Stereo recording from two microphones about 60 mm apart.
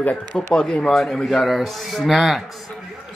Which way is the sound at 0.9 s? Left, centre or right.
Centre.